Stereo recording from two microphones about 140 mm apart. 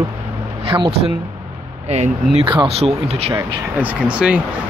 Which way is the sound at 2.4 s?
35° right (ahead or behind).